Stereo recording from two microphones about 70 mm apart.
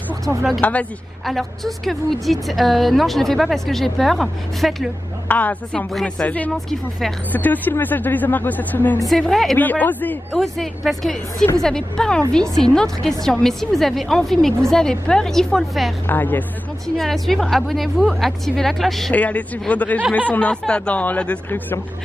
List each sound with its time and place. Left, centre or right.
0.6 s speech: left
1.2 s a woman's voice: centre
5.3 s speech: left
6.7 s a woman's voice: centre
7.3 s speech: left
9.2 s a woman's voice: centre
9.6 s speech: left
10.3 s a woman's voice: centre
16.1 s speech: left
16.8 s a woman's voice: centre
19.1 s a woman's voice: left